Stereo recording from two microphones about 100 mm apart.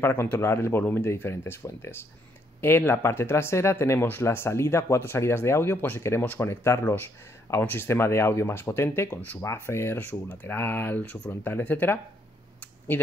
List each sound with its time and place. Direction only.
0.0 s speech: 25° left (ahead or behind)